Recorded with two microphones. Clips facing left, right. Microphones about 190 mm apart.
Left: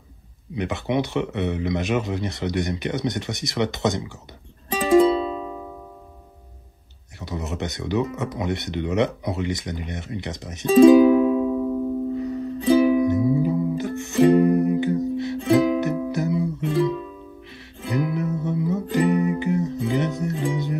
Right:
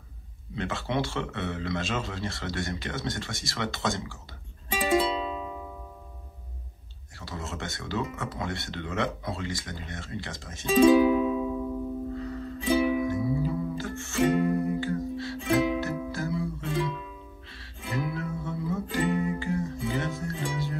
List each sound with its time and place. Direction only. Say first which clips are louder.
0.6 s speech: left 6 dB; 15° left (ahead or behind)
4.6 s music: left 9 dB; 35° left (ahead or behind)
7.2 s speech: left 7 dB; 20° left (ahead or behind)
10.7 s music: left 7 dB; 35° left (ahead or behind)
12.1 s music: left 8 dB; 20° left (ahead or behind)
12.5 s music: left 8 dB; 35° left (ahead or behind)
13.0 s music: left 8 dB; 20° left (ahead or behind)
14.2 s music: left 8 dB; 40° left (ahead or behind)
14.5 s music: left 8 dB; 20° left (ahead or behind)
15.3 s music: left 7 dB; 35° left (ahead or behind)
16.1 s music: left 7 dB; 20° left (ahead or behind)
17.8 s music: left 8 dB; 20° left (ahead or behind)